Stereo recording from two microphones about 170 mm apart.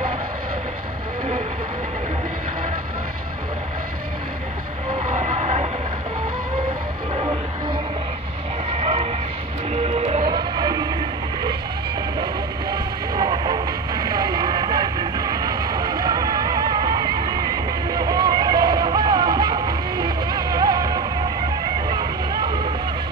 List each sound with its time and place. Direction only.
5.1 s train: 45° right (ahead or behind)
8.8 s a sound: 40° right (ahead or behind)
9.8 s train: 40° right (ahead or behind)
10.3 s music: 25° right (ahead or behind)
12.7 s music: 25° right (ahead or behind)